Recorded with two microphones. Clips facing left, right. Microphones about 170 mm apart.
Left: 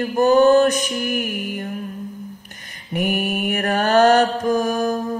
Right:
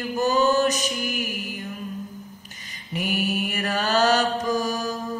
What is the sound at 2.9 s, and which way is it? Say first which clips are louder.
Mantra: left 4 dB; 55° left (ahead or behind).